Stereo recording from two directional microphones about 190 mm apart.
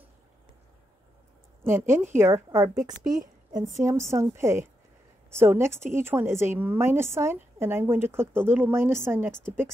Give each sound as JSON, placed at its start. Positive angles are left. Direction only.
{"t": 1.6, "sound": "a woman's voice", "side_deg": -10}
{"t": 3.0, "sound": "a woman's voice", "side_deg": -45}
{"t": 3.8, "sound": "a woman's voice", "side_deg": -15}